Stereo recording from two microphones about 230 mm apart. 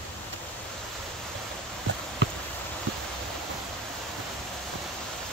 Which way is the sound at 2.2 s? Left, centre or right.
Right.